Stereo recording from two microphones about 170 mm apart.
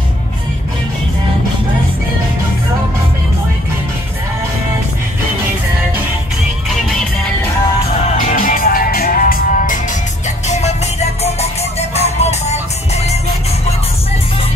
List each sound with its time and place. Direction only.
8.3 s music: 50° left (ahead or behind)
11.9 s music: 40° left (ahead or behind)